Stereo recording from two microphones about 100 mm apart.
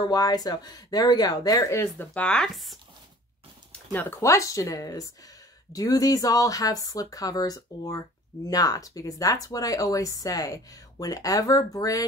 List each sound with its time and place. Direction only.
0.0 s speech: 40° left (ahead or behind)
2.0 s speech: 10° left (ahead or behind)
3.7 s speech: 20° left (ahead or behind); by 12.1 s 35° left (ahead or behind)